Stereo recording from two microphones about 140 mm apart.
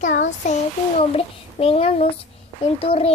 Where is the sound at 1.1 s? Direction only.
45° left (ahead or behind).